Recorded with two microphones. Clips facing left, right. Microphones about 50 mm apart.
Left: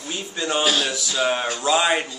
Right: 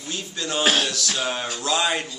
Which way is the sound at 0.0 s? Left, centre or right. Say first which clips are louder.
Left 3 dB; centre.